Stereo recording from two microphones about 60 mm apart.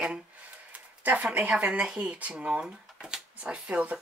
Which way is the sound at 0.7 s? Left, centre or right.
Right.